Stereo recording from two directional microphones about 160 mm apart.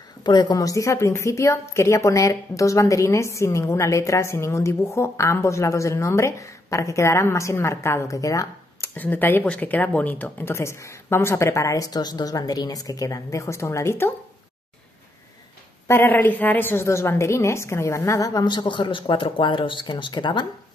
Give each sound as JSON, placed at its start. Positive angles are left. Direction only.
{"t": 0.2, "sound": "a woman's voice", "side_deg": 25}
{"t": 15.9, "sound": "a woman's voice", "side_deg": 15}